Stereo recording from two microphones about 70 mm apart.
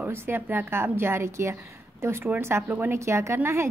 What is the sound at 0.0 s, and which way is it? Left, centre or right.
A woman's voice, right.